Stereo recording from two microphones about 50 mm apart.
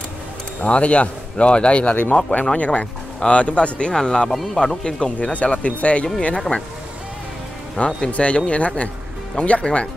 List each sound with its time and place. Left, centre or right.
0.7 s speech: left
7.7 s speech: centre
8.1 s speech: left